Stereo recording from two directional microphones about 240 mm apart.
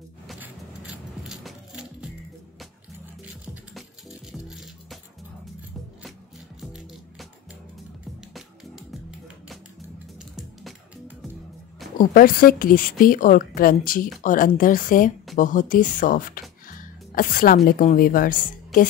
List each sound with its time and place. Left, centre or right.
0.3 s music: centre
3.7 s music: centre
6.6 s music: centre
8.4 s music: centre
12.0 s a woman's voice: left